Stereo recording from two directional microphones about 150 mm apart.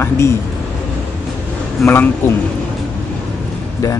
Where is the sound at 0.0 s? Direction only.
15° left (ahead or behind).